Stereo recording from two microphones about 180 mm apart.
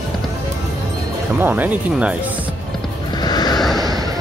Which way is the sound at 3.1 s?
20° left (ahead or behind).